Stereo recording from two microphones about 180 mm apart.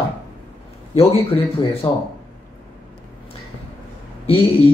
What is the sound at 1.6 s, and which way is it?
Speech, 30° left (ahead or behind).